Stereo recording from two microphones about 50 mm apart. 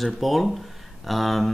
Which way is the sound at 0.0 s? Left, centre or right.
Centre.